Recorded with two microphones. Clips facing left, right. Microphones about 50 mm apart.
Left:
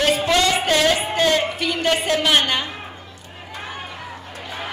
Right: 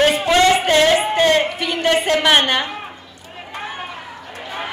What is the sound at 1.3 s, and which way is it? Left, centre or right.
A woman's voice, right.